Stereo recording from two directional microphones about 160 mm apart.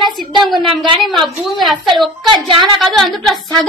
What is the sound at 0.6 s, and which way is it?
Speech, 30° right (ahead or behind).